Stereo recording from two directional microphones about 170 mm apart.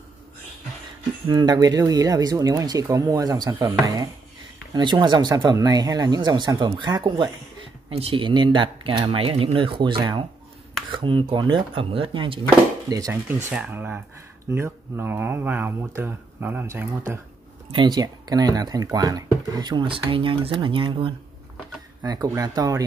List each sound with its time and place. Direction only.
1.2 s speech: 25° right (ahead or behind)
12.9 s speech: 15° right (ahead or behind)
17.6 s speech: 25° right (ahead or behind)